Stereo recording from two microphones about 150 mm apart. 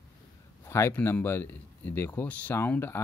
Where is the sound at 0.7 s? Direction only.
20° left (ahead or behind).